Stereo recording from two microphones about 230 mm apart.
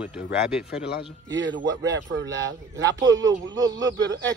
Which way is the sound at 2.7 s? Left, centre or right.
Centre.